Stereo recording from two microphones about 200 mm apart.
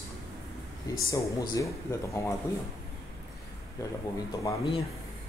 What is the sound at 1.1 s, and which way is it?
Speech, 15° left (ahead or behind).